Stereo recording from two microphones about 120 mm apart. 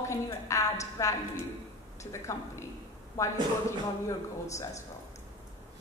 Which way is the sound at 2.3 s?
25° left (ahead or behind).